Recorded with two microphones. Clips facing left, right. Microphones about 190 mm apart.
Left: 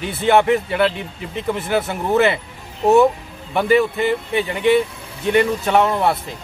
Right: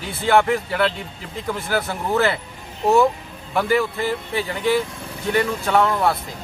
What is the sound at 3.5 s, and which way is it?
Speech, 20° left (ahead or behind).